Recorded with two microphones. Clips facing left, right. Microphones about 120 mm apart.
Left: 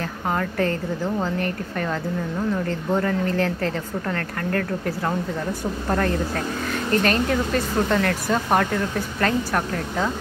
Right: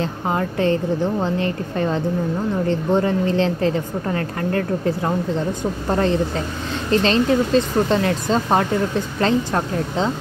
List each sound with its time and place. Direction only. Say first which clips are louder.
0.3 s a woman's voice: right 3 dB; 20° right (ahead or behind)